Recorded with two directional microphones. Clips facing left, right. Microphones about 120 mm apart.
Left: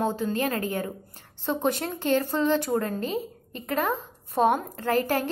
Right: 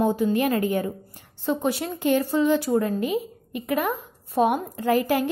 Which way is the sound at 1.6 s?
45° left (ahead or behind).